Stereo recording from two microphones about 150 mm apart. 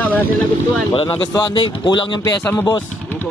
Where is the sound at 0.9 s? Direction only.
35° left (ahead or behind).